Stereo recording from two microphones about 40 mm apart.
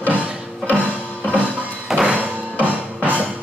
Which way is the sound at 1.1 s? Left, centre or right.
Left.